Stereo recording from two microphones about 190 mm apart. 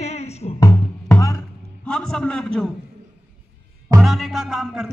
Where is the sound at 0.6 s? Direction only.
15° left (ahead or behind).